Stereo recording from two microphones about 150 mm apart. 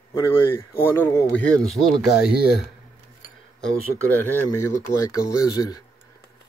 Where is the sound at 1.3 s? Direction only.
10° left (ahead or behind).